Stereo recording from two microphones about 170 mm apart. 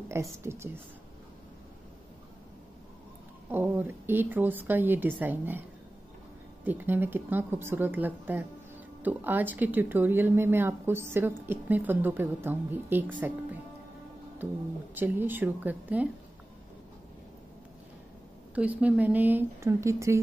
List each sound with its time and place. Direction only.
0.1 s speech: 15° right (ahead or behind)
3.4 s speech: 10° right (ahead or behind)
6.6 s speech: 10° right (ahead or behind)
15.0 s speech: 10° right (ahead or behind)
18.5 s speech: 10° right (ahead or behind)